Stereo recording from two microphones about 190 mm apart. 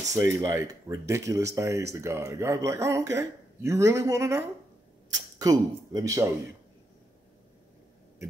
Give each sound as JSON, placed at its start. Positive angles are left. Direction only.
{"t": 0.1, "sound": "speech", "side_deg": -15}